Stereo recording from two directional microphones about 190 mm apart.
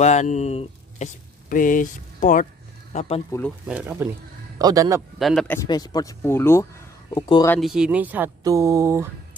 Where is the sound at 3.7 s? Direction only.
10° right (ahead or behind).